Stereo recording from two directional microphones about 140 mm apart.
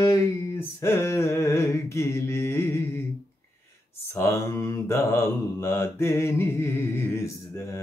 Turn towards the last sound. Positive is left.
turn(degrees=20)  # may be behind; listen again after turning